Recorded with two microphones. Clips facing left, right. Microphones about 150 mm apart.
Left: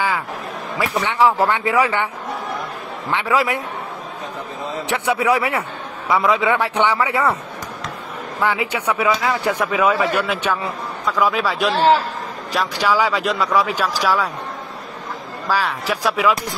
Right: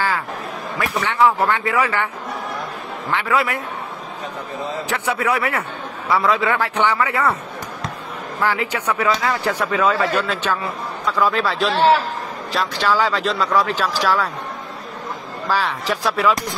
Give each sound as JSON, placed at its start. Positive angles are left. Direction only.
{"t": 0.7, "sound": "speech", "side_deg": 20}
{"t": 3.1, "sound": "speech", "side_deg": 20}
{"t": 4.9, "sound": "speech", "side_deg": 15}
{"t": 8.4, "sound": "speech", "side_deg": 15}
{"t": 15.4, "sound": "speech", "side_deg": 10}